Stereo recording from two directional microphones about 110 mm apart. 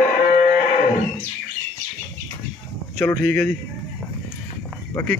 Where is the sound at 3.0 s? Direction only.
20° left (ahead or behind).